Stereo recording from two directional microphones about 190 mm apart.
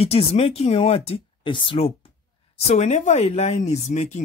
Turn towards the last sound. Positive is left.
turn(degrees=35)  # may be behind; listen again after turning